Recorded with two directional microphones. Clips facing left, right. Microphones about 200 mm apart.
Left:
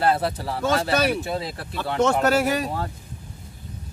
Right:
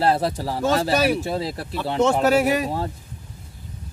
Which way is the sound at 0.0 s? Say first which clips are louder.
Right 1 dB; 35° right (ahead or behind).